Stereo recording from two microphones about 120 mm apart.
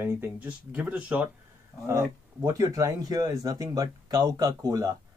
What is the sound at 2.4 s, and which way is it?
Speech, 30° right (ahead or behind).